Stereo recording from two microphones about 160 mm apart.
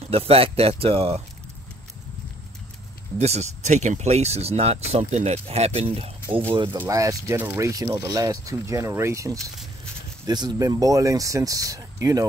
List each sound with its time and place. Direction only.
0.1 s speech: 35° right (ahead or behind)
3.2 s speech: 45° right (ahead or behind); by 12.3 s 20° right (ahead or behind)